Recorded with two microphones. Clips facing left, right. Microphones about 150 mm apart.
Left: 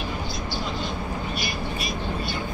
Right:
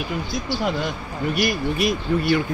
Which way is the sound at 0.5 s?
70° right (ahead or behind).